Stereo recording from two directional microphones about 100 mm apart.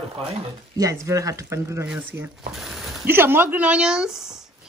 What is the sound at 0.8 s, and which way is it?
Speech, 35° right (ahead or behind).